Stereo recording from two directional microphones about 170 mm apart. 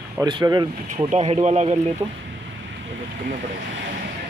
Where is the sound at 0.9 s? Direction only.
40° right (ahead or behind).